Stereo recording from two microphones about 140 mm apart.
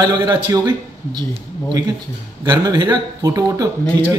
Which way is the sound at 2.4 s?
30° right (ahead or behind).